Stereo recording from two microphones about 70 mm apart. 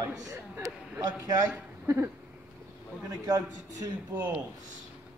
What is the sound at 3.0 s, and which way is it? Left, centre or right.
Speech, right.